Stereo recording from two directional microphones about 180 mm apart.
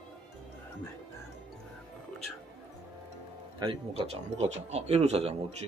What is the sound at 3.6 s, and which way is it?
Speech, 30° right (ahead or behind).